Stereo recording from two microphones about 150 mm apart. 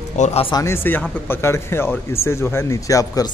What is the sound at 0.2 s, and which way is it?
Speech, 45° left (ahead or behind).